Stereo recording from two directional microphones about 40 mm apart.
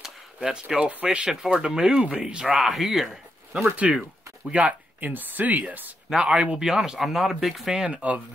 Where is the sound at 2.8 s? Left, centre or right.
Centre.